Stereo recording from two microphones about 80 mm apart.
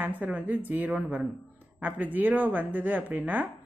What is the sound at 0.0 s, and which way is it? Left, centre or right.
Speech, right.